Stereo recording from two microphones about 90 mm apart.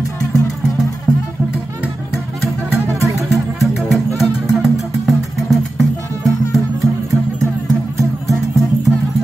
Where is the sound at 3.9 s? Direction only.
Centre (ahead or behind).